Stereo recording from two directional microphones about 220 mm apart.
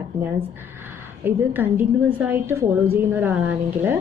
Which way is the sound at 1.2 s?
10° right (ahead or behind).